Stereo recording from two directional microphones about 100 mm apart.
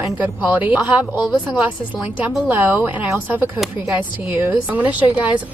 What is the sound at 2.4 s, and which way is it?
Speech, 20° right (ahead or behind).